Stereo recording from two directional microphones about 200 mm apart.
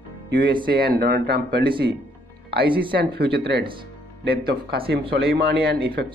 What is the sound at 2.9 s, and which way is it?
Speech, 50° right (ahead or behind).